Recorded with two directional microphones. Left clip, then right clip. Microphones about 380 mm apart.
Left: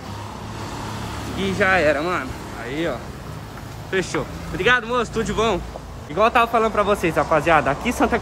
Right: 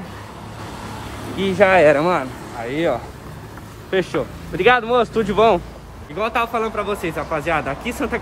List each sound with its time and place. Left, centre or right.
1.4 s speech: centre
6.1 s speech: centre